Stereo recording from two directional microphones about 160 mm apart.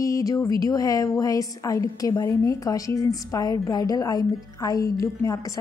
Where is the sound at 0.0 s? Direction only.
20° left (ahead or behind).